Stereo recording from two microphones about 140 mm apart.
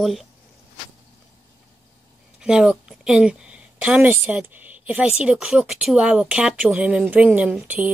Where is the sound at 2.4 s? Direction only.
5° right (ahead or behind).